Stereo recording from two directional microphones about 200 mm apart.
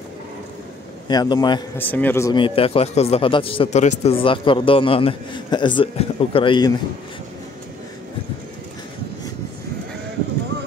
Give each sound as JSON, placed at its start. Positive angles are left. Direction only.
{"t": 1.0, "sound": "speech", "side_deg": 20}
{"t": 1.8, "sound": "speech", "side_deg": 10}
{"t": 2.3, "sound": "speech", "side_deg": 25}